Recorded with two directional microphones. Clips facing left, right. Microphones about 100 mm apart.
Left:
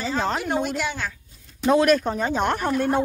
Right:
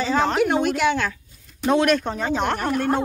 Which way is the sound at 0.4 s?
75° right (ahead or behind).